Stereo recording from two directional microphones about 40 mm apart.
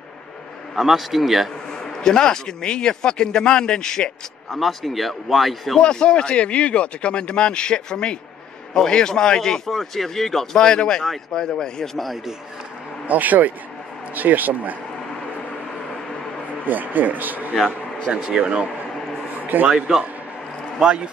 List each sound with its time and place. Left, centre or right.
0.7 s speech: centre
2.0 s speech: centre
4.5 s speech: centre
5.8 s speech: left
9.7 s speech: centre
13.0 s speech: right
16.6 s speech: right
18.3 s speech: right
19.4 s a sound: right
19.7 s speech: right